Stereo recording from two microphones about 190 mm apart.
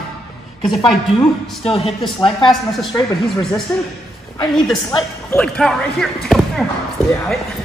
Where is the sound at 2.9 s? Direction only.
10° left (ahead or behind).